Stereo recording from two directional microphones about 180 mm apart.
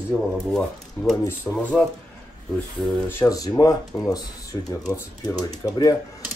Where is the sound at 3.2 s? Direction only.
20° left (ahead or behind).